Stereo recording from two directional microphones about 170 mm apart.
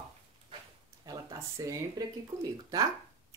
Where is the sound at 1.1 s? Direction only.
20° right (ahead or behind).